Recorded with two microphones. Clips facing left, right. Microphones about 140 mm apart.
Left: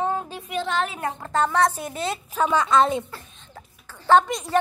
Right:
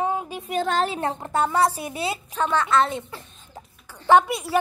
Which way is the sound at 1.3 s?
10° right (ahead or behind).